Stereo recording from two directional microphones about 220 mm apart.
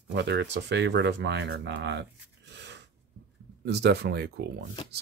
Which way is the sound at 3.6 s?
50° right (ahead or behind).